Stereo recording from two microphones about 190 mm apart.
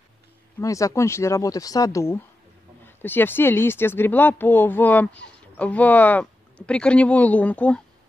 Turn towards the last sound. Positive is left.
turn(degrees=5)  # may be behind; listen again after turning